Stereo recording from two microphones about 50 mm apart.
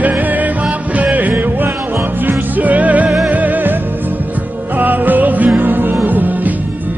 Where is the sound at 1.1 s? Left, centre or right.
Right.